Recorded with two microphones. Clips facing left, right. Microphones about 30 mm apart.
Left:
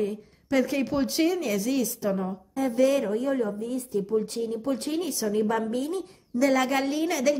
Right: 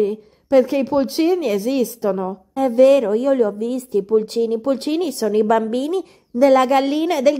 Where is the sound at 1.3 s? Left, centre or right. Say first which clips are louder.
Right 8 dB; right.